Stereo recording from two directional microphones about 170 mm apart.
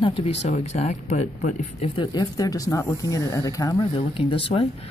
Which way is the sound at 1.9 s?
25° left (ahead or behind).